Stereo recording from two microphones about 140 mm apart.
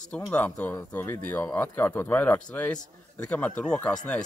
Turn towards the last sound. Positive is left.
turn(degrees=10)  # may be behind; listen again after turning